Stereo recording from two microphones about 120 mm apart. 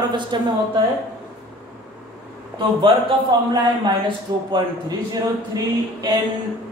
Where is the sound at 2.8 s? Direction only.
45° right (ahead or behind).